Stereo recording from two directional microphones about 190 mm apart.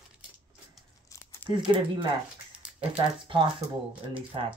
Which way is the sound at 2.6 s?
5° right (ahead or behind).